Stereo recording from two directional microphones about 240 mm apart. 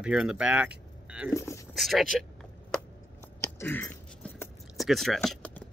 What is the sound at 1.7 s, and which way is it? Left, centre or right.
Speech, centre.